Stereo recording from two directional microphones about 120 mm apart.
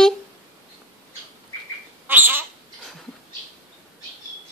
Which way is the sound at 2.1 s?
15° right (ahead or behind).